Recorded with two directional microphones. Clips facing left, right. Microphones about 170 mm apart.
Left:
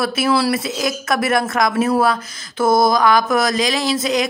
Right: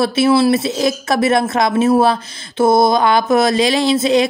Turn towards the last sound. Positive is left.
turn(degrees=-30)  # may be behind; listen again after turning